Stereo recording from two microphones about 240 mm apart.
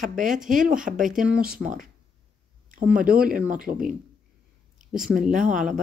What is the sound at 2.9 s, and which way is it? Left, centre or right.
Speech, centre.